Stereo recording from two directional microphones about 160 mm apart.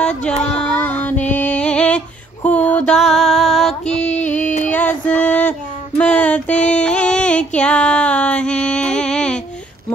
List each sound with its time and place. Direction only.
0.0 s female singing: 5° left (ahead or behind)
3.8 s music: 45° left (ahead or behind)
4.3 s music: 10° left (ahead or behind)
4.6 s a sound: 10° left (ahead or behind)